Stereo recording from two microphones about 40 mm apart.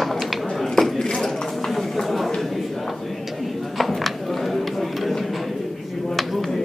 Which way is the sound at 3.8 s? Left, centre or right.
Centre.